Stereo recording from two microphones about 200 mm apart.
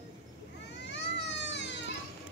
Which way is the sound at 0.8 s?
60° left (ahead or behind).